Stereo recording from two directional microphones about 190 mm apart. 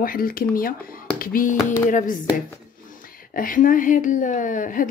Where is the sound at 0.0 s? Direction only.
50° left (ahead or behind).